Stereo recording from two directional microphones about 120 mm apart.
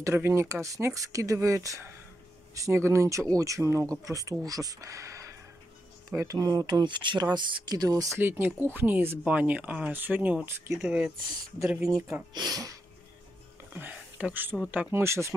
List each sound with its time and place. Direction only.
0.0 s speech: 20° right (ahead or behind)
8.2 s speech: 20° right (ahead or behind)
11.9 s speech: 30° right (ahead or behind)
13.7 s speech: 10° right (ahead or behind)